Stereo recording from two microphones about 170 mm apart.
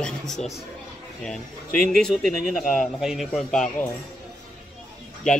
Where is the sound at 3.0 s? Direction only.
Centre (ahead or behind).